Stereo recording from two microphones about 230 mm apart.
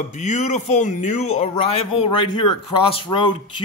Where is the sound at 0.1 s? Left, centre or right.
Left.